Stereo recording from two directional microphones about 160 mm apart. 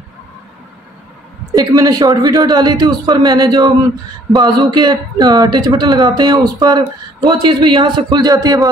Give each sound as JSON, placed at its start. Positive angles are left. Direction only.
{"t": 1.5, "sound": "a man's voice", "side_deg": -25}